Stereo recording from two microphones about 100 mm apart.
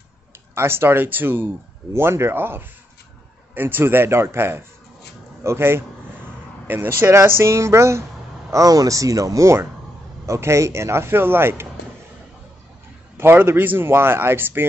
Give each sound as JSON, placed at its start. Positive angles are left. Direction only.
{"t": 0.6, "sound": "speech", "side_deg": -25}
{"t": 13.2, "sound": "speech", "side_deg": -20}